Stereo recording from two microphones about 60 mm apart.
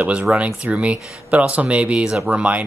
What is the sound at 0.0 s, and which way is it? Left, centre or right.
Speech, centre.